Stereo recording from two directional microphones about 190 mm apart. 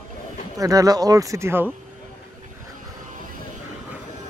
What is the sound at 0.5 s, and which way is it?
Speech, 20° right (ahead or behind).